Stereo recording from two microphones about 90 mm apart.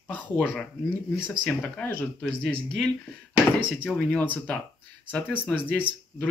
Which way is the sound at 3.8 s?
15° left (ahead or behind).